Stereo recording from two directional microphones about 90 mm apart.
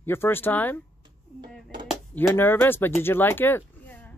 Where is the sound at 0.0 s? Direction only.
25° left (ahead or behind).